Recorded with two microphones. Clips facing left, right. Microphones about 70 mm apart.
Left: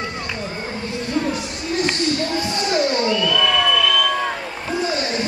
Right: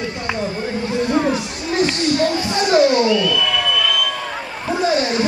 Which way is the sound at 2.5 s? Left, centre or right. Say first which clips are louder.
Right 7 dB; right.